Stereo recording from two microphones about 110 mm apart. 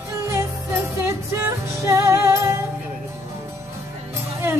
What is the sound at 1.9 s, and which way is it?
Music, 25° right (ahead or behind).